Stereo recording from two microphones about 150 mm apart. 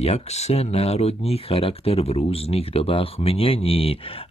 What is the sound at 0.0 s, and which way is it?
Speech, 45° left (ahead or behind).